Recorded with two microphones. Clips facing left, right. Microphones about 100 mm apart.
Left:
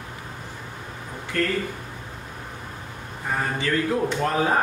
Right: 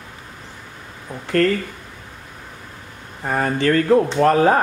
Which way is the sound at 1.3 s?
70° right (ahead or behind).